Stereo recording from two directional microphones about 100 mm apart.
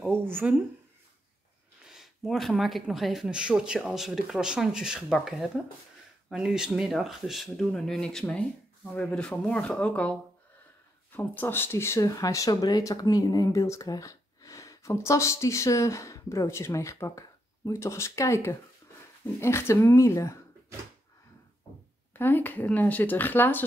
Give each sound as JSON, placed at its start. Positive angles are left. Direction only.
{"t": 0.3, "sound": "speech", "side_deg": -20}
{"t": 1.9, "sound": "speech", "side_deg": 0}
{"t": 11.1, "sound": "speech", "side_deg": 20}
{"t": 22.1, "sound": "speech", "side_deg": 20}